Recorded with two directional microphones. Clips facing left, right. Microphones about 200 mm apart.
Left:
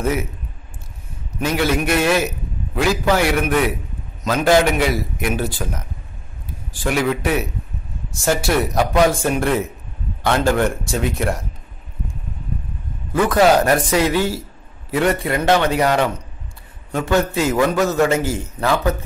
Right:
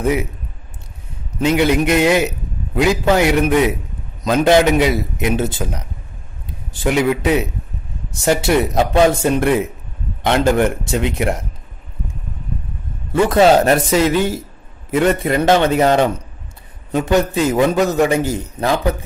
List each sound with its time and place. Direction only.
0.0 s a man's voice: 15° right (ahead or behind)
1.4 s a man's voice: 20° right (ahead or behind)
13.1 s a man's voice: 25° right (ahead or behind)